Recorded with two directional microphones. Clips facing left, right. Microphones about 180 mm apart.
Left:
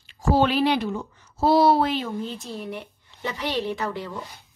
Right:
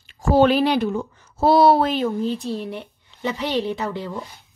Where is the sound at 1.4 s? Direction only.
55° right (ahead or behind).